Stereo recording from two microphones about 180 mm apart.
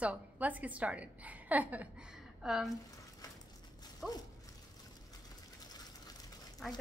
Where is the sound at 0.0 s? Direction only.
10° right (ahead or behind).